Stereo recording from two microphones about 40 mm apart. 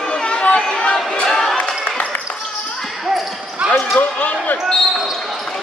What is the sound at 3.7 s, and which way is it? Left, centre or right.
Basketball bounce, left.